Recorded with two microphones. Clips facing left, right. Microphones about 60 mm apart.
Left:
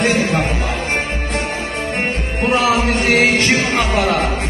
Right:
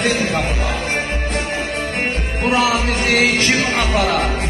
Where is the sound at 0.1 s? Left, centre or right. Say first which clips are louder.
Left 2 dB; left.